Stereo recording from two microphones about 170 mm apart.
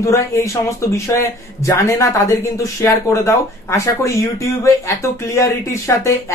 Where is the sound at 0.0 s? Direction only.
15° left (ahead or behind).